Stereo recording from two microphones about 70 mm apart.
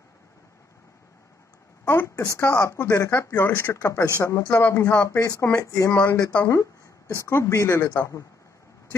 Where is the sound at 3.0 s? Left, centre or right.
Left.